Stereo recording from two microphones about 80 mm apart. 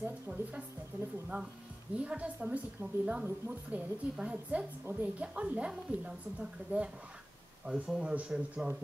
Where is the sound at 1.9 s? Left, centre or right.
Centre.